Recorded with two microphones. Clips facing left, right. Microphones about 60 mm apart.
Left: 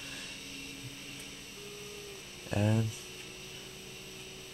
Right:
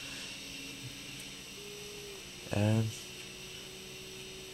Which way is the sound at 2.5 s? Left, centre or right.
Centre.